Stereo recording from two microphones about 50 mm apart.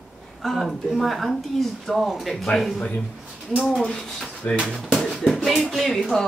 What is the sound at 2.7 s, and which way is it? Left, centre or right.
Speech, left.